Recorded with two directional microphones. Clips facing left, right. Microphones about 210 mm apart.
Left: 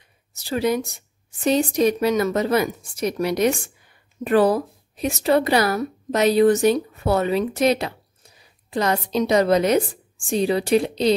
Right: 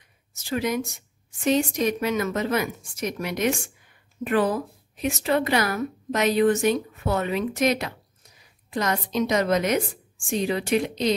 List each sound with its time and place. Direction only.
0.3 s a woman's voice: 35° left (ahead or behind)